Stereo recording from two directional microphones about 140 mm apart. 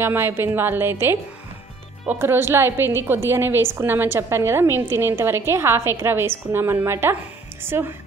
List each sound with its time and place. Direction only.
0.0 s a woman's voice: 15° right (ahead or behind)